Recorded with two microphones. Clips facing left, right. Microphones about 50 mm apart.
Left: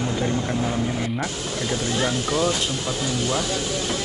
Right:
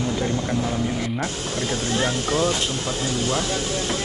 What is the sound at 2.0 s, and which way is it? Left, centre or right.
Speech, right.